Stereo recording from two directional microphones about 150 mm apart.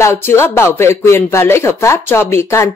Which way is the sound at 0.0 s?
15° left (ahead or behind).